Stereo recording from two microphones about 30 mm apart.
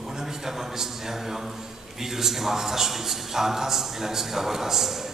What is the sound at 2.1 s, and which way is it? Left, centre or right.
Speech, centre.